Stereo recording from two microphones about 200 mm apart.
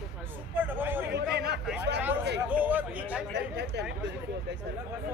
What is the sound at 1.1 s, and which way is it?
Speech, 55° right (ahead or behind).